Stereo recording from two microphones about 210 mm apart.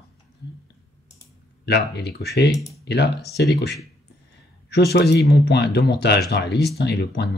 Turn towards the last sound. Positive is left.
turn(degrees=50)  # may be behind; listen again after turning